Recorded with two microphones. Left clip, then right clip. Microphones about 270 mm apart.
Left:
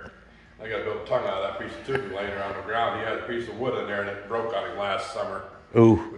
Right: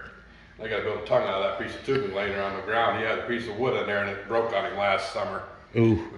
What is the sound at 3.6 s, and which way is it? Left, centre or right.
A man's voice, right.